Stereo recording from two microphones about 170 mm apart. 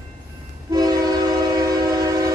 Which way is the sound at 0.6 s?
20° right (ahead or behind).